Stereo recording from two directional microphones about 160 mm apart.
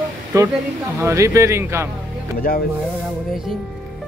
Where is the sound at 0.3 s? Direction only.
20° right (ahead or behind).